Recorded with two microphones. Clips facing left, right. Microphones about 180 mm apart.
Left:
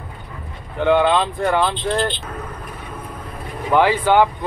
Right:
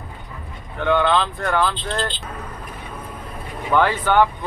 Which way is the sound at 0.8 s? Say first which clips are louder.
Left 3 dB; 15° left (ahead or behind).